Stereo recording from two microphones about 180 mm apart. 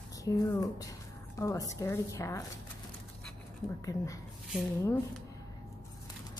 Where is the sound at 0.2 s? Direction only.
20° left (ahead or behind).